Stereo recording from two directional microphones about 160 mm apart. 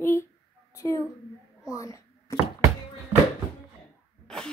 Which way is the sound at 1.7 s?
20° left (ahead or behind).